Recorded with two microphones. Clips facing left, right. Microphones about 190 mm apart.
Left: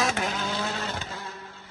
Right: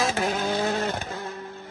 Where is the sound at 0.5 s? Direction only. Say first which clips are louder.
Right 6 dB; 50° right (ahead or behind).